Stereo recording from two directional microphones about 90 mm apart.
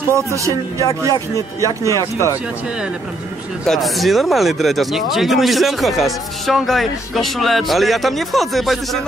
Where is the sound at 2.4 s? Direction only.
10° right (ahead or behind).